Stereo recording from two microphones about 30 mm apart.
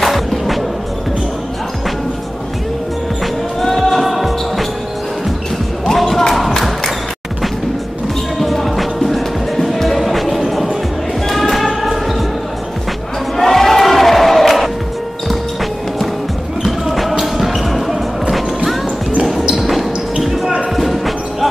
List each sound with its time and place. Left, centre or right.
0.0 s music: centre
3.6 s music: centre
5.9 s a sound: centre
8.4 s music: centre
11.2 s a sound: centre
11.8 s basketball bounce: centre
13.4 s crowd: centre
16.8 s music: centre
17.6 s basketball bounce: centre
19.5 s basketball bounce: centre